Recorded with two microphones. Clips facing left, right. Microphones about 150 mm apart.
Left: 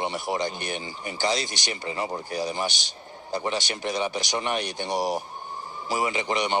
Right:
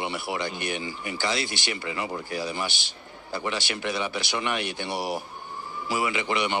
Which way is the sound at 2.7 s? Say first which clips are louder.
Left 1 dB; 20° left (ahead or behind).